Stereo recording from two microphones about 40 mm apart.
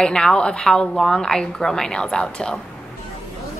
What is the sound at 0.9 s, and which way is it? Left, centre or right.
A woman's voice, centre.